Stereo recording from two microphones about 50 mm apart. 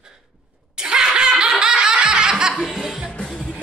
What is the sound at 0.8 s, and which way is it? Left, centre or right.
Snicker, centre.